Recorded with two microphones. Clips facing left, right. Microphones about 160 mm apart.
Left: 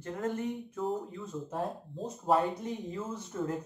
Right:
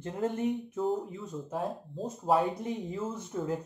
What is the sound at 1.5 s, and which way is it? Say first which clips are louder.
Speech: right 2 dB; centre (ahead or behind).